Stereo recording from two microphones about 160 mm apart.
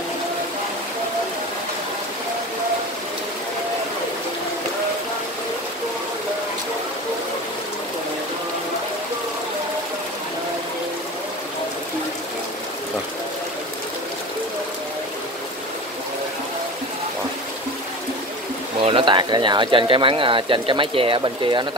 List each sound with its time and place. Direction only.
18.8 s speech: 35° right (ahead or behind)